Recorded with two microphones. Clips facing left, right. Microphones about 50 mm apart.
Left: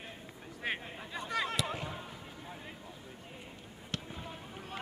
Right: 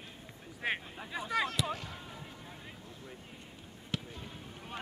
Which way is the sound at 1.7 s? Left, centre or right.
Left.